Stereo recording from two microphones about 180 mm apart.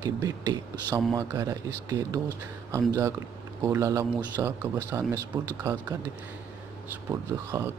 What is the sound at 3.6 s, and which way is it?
Speech, 15° right (ahead or behind).